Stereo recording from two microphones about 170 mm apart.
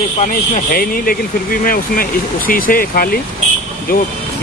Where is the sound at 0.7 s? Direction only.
60° left (ahead or behind).